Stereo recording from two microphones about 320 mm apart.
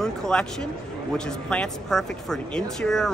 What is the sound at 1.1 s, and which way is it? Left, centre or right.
Speech, centre.